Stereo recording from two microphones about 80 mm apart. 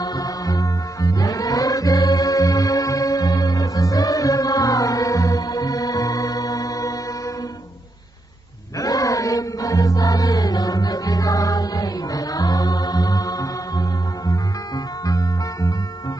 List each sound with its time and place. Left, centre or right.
0.0 s music: left
8.8 s music: left